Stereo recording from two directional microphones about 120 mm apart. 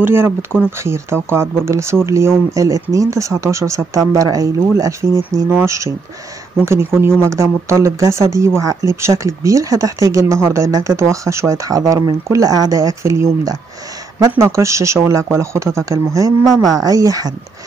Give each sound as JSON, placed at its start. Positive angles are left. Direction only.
{"t": 0.0, "sound": "speech", "side_deg": -20}